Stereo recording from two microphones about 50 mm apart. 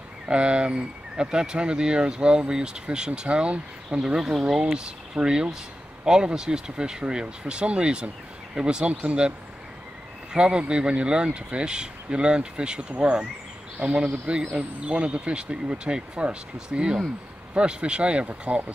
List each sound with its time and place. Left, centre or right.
0.3 s speech: right
10.3 s speech: centre